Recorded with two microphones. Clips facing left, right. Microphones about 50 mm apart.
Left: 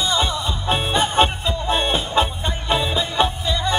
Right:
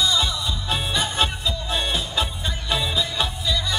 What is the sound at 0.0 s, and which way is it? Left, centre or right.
Music, left.